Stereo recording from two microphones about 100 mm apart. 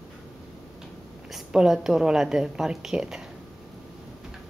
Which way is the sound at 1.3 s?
5° right (ahead or behind).